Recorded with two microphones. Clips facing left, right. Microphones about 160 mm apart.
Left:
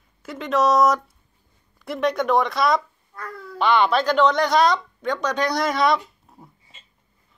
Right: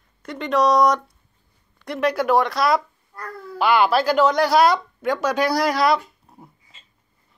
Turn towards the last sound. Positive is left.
turn(degrees=0)  # may be behind; listen again after turning